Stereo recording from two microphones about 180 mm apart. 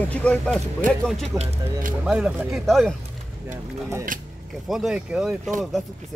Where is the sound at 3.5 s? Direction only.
15° right (ahead or behind).